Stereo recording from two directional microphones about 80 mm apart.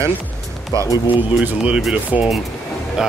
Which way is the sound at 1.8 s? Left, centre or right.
Centre.